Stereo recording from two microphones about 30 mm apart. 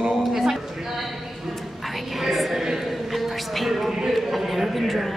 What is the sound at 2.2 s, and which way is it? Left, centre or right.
A man's voice, centre.